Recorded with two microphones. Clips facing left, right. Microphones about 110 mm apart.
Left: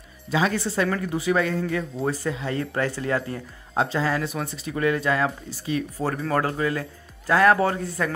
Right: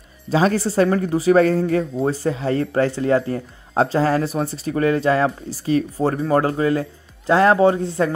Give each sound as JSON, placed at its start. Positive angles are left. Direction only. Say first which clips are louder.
{"t": 0.3, "sound": "speech", "louder": "right 6 dB", "side_deg": -35}